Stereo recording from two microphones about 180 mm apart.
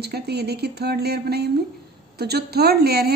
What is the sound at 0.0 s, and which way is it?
A woman's voice, 65° right (ahead or behind).